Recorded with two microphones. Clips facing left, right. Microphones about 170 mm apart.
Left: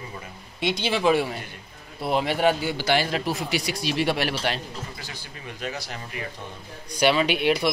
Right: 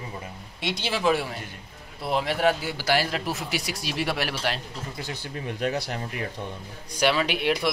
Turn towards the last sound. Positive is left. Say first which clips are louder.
# left 3 dB
turn(degrees=0)  # may be behind; listen again after turning